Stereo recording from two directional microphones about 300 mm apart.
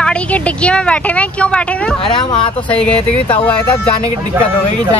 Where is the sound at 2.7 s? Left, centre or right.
Centre.